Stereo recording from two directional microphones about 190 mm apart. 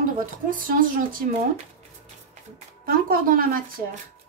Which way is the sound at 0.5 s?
45° right (ahead or behind).